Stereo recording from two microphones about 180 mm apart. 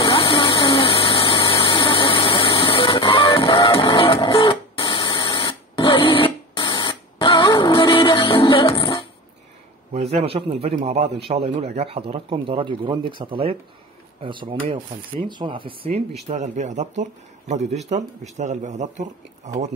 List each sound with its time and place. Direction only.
0.0 s vehicle: 30° left (ahead or behind)
7.2 s music: 25° left (ahead or behind)
9.9 s speech: 35° right (ahead or behind)
16.3 s speech: 40° right (ahead or behind)